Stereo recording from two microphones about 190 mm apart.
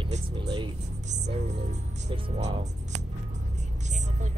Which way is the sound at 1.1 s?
35° right (ahead or behind).